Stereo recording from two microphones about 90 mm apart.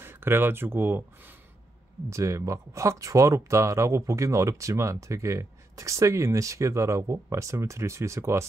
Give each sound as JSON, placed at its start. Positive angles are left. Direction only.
{"t": 0.0, "sound": "speech", "side_deg": -25}